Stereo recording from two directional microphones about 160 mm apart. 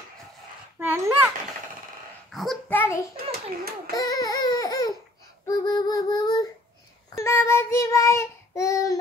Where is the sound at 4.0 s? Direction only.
20° left (ahead or behind).